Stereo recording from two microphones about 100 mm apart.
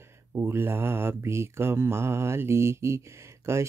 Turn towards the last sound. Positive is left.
turn(degrees=-30)  # may be behind; listen again after turning